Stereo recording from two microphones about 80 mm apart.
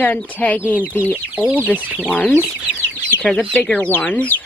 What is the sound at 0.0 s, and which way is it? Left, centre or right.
Speech, centre.